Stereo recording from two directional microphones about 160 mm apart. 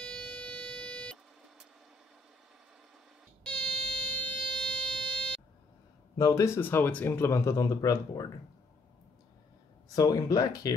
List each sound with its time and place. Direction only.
0.0 s vehicle: 10° left (ahead or behind)
3.4 s a sound: 5° left (ahead or behind)
6.1 s speech: 20° left (ahead or behind)
9.9 s speech: 20° left (ahead or behind)